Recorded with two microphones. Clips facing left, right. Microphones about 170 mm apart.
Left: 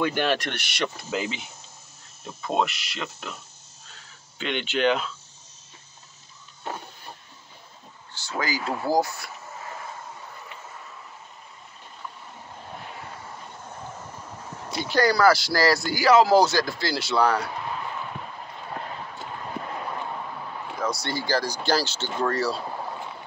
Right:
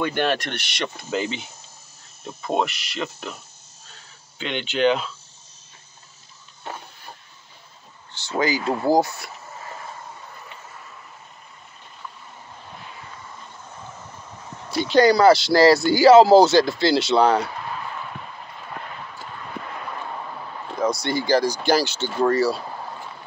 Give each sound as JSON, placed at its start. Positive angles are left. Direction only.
{"t": 0.0, "sound": "speech", "side_deg": 0}
{"t": 4.4, "sound": "speech", "side_deg": 0}
{"t": 8.1, "sound": "speech", "side_deg": -20}
{"t": 12.8, "sound": "vehicle", "side_deg": 55}
{"t": 14.9, "sound": "speech", "side_deg": -20}
{"t": 20.8, "sound": "speech", "side_deg": -15}